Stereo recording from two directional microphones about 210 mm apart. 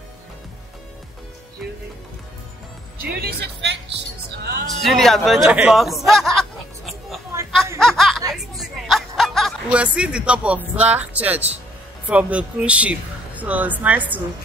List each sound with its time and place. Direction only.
3.0 s speech: 45° right (ahead or behind)
4.6 s speech: centre (ahead or behind)
7.8 s snicker: centre (ahead or behind)
8.3 s a sound: centre (ahead or behind)
10.8 s speech: 5° right (ahead or behind)